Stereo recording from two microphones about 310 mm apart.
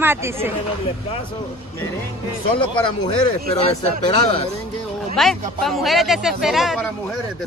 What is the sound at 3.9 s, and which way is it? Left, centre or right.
Speech, right.